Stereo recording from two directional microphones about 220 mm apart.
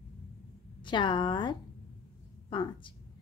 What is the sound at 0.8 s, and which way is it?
Speech, 20° left (ahead or behind).